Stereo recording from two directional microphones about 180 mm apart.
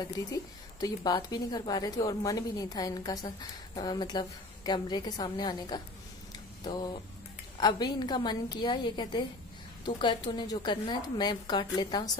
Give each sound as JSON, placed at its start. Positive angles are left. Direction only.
{"t": 0.0, "sound": "speech", "side_deg": 20}